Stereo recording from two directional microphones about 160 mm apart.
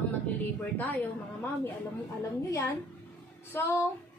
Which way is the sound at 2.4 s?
20° left (ahead or behind).